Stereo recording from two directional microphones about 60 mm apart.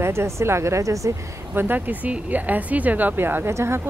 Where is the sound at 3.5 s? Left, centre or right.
Right.